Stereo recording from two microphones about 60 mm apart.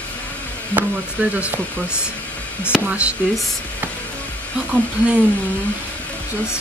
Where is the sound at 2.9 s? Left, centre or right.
Right.